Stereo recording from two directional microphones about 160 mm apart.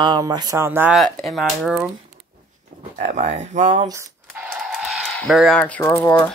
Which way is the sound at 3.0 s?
45° right (ahead or behind).